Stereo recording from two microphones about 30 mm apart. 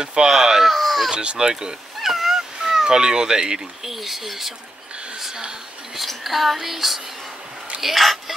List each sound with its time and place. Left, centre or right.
0.0 s speech: right
0.7 s a sound: centre
1.1 s speech: right
2.0 s cat: centre; by 3.6 s right
3.8 s speech: centre
5.9 s a sound: centre
7.8 s speech: centre